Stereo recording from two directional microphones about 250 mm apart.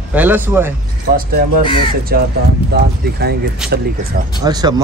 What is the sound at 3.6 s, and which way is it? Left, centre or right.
Speech, centre.